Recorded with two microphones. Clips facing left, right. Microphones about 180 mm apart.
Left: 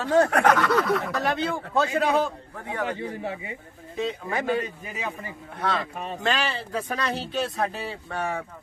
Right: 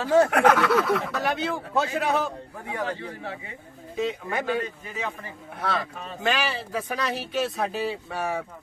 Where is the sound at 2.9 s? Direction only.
15° left (ahead or behind).